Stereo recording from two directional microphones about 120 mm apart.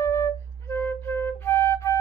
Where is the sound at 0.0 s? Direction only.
25° left (ahead or behind).